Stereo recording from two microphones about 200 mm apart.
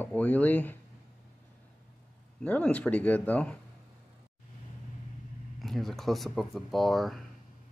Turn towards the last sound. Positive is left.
turn(degrees=0)  # may be behind; listen again after turning